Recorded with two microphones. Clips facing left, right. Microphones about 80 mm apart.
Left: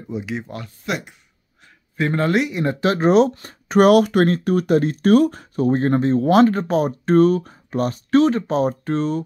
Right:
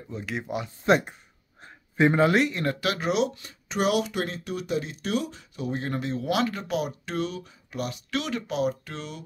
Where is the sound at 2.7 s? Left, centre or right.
Left.